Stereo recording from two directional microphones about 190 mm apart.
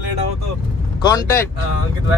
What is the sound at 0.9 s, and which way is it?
Speech, 20° left (ahead or behind).